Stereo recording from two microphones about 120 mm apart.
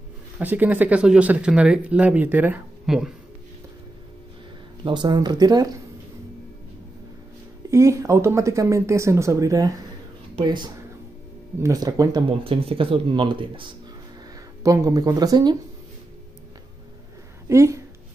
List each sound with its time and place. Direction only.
0.4 s speech: 15° right (ahead or behind)
2.9 s speech: 5° right (ahead or behind)
4.8 s speech: 40° right (ahead or behind)
7.7 s speech: 25° right (ahead or behind)
10.4 s speech: 40° right (ahead or behind)
12.3 s speech: 50° right (ahead or behind)
14.6 s speech: 25° right (ahead or behind)
17.5 s speech: 25° right (ahead or behind)